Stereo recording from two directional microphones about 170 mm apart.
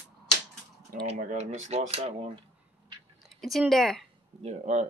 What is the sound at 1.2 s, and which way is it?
Speech, 45° right (ahead or behind).